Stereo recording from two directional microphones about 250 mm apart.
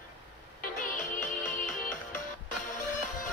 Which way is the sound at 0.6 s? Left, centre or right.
Left.